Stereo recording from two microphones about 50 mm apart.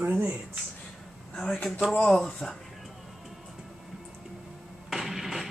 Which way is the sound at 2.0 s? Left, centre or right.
Centre.